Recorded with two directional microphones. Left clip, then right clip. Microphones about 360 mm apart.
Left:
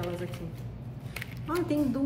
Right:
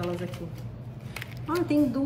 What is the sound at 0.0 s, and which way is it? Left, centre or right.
Speech, centre.